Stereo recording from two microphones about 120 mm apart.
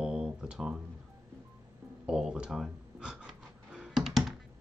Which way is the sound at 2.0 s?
5° right (ahead or behind).